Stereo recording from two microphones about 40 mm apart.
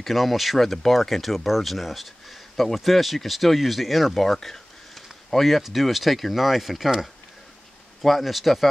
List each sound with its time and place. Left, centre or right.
0.0 s speech: centre
8.0 s speech: centre